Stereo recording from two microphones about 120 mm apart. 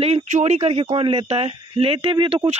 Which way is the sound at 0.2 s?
80° right.